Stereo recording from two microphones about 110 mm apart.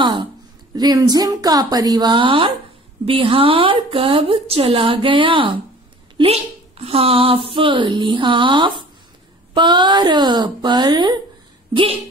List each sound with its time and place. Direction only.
0.0 s a sound: 45° right (ahead or behind)
0.7 s speech: 35° right (ahead or behind)
6.1 s speech: 65° right (ahead or behind); by 11.1 s 40° right (ahead or behind)
11.7 s speech: 55° right (ahead or behind)